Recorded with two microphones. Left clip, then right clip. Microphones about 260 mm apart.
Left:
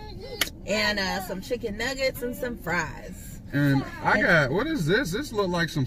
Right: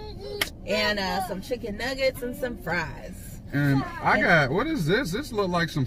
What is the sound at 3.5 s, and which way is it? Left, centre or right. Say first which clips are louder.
Speech: left 1 dB; centre.